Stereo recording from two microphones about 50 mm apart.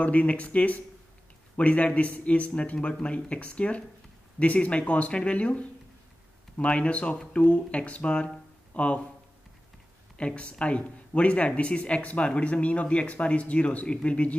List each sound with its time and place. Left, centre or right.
0.0 s speech: left
10.1 s speech: left